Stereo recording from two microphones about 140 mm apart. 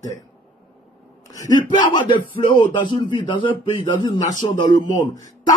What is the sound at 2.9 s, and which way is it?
Speech, 35° left (ahead or behind).